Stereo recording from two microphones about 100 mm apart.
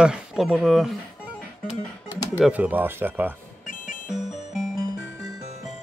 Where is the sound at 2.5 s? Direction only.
15° right (ahead or behind).